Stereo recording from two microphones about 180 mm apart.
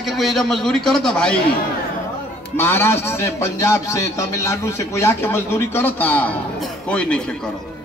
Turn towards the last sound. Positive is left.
turn(degrees=5)  # may be behind; listen again after turning